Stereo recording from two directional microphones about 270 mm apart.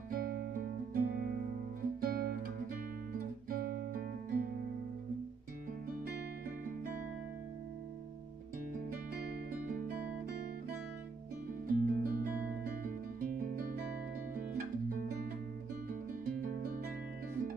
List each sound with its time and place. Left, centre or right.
0.1 s music: right
1.8 s guitar: right
5.9 s music: right
8.9 s music: right
11.6 s music: right
13.4 s guitar: right
14.3 s music: right